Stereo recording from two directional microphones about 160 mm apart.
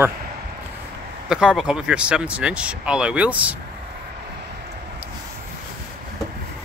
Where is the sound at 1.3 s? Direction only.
5° right (ahead or behind).